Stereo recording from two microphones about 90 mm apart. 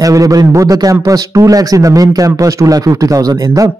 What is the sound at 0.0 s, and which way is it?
Speech, 40° right (ahead or behind).